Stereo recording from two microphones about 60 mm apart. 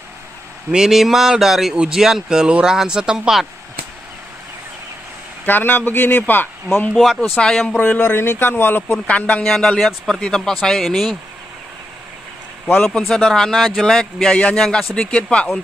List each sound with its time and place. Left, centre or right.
0.7 s speech: centre
5.4 s speech: left
7.3 s speech: centre
7.6 s speech: left
8.0 s speech: left
9.0 s speech: left
9.4 s speech: centre
12.8 s speech: centre
14.3 s speech: centre